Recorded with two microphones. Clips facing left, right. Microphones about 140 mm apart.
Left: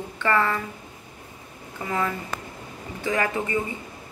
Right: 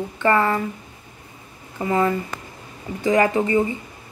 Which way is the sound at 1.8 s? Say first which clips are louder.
Right 7 dB; 30° right (ahead or behind).